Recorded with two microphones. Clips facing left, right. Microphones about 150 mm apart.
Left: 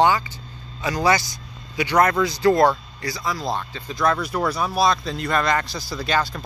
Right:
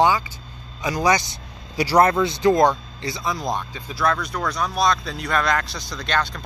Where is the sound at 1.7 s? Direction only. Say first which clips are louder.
Right 2 dB; 35° right (ahead or behind).